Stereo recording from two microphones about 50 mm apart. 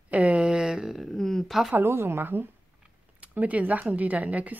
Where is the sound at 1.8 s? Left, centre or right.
Right.